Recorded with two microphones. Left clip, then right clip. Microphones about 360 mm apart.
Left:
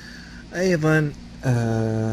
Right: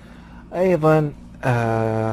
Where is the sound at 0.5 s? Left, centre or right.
Centre.